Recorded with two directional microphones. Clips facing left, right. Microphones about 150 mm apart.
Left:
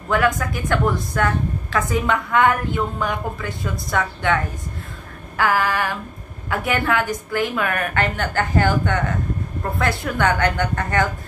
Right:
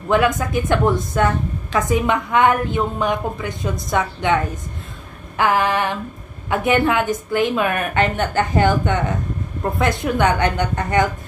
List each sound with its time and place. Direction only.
0.4 s a woman's voice: 20° right (ahead or behind)
5.4 s a woman's voice: 20° right (ahead or behind)